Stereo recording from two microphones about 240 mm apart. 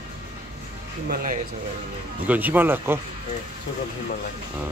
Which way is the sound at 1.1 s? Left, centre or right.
Right.